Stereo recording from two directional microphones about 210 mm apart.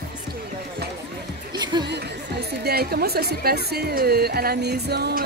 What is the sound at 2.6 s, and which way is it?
Speech, 50° right (ahead or behind).